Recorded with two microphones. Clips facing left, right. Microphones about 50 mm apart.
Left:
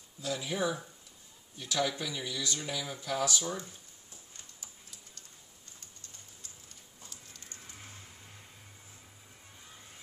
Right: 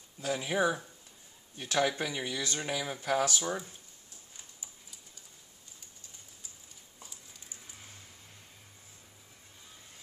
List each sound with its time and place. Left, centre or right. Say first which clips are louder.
0.2 s speech: right 3 dB; right
4.6 s typing: even; centre
7.0 s a sound: even; centre